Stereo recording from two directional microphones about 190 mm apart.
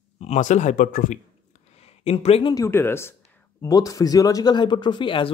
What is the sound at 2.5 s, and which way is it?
Speech, 15° left (ahead or behind).